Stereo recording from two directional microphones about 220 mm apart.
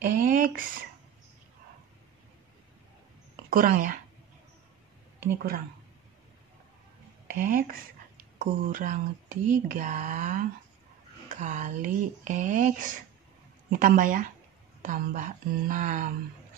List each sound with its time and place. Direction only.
0.0 s speech: 40° right (ahead or behind)
3.4 s a woman's voice: 40° right (ahead or behind)
7.3 s speech: 40° right (ahead or behind)